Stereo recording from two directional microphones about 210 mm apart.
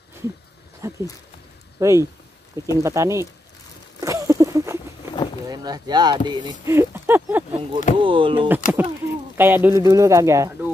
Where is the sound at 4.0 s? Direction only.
15° right (ahead or behind).